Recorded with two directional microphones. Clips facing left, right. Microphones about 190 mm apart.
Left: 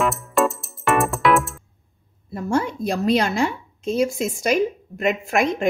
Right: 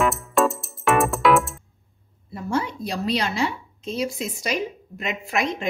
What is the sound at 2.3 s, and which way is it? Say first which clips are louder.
A woman's voice: left 4 dB; 50° left (ahead or behind).